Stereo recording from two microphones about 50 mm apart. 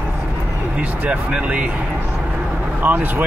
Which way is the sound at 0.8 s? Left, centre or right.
Right.